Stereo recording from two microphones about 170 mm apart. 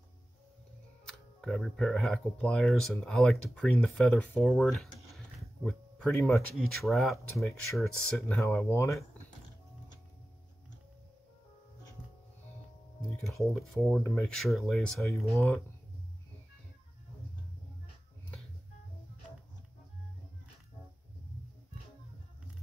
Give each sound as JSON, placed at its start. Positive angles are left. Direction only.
{"t": 1.0, "sound": "speech", "side_deg": 5}
{"t": 8.5, "sound": "speech", "side_deg": 15}
{"t": 13.2, "sound": "speech", "side_deg": 0}